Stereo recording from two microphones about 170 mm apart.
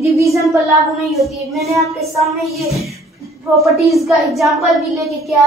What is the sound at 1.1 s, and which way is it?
A woman's voice, centre (ahead or behind).